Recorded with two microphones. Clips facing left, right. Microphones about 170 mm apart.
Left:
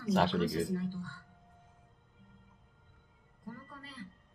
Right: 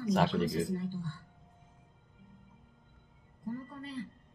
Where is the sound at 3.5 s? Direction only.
20° right (ahead or behind).